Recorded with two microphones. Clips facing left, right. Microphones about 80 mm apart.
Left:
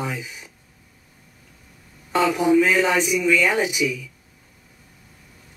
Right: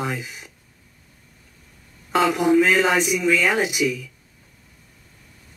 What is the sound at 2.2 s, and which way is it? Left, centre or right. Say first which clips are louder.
Speech: even; centre.